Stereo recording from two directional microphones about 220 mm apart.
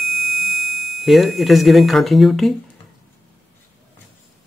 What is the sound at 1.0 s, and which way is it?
Speech, centre (ahead or behind).